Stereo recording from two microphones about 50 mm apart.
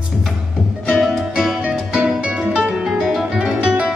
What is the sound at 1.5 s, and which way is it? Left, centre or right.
Music, centre.